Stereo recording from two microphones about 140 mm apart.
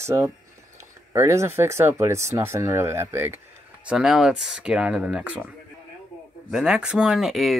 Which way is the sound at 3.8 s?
5° right (ahead or behind).